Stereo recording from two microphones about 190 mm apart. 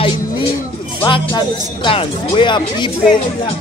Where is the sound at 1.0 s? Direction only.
25° left (ahead or behind).